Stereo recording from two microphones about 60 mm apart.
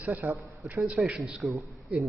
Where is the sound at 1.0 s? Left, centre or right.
Centre.